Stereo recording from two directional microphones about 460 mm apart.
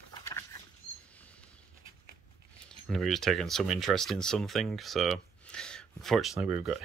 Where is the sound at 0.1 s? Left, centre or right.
Centre.